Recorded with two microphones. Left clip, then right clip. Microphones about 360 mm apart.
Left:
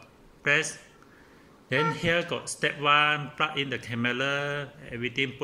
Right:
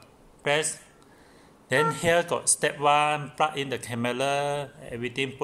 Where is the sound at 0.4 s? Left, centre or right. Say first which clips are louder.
Left 1 dB; centre.